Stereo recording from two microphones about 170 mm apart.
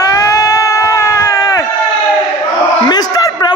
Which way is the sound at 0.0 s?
20° left (ahead or behind).